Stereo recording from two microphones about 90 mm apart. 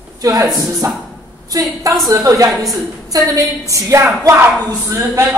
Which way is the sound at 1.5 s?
45° right (ahead or behind).